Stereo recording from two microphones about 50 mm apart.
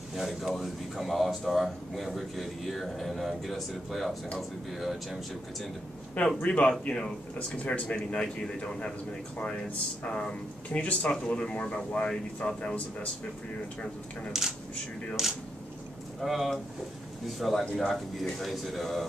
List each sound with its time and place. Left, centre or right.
0.1 s speech: centre
6.1 s speech: left
10.7 s speech: left
14.3 s speech: centre
16.2 s speech: centre